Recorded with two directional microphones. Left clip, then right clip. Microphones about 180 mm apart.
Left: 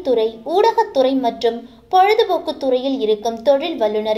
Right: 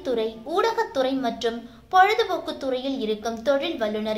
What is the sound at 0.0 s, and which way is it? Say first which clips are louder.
A woman's voice: left 9 dB; 10° left (ahead or behind).